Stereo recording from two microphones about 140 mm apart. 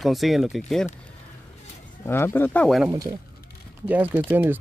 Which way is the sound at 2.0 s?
15° left (ahead or behind).